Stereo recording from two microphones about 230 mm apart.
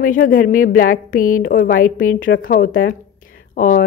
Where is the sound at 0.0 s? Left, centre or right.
Left.